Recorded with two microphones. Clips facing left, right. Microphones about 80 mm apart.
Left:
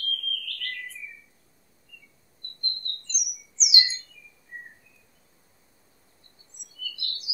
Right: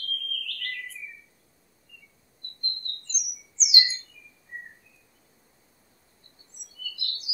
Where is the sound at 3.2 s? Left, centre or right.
Right.